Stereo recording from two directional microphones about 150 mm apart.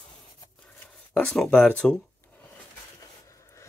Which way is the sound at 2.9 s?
20° left (ahead or behind).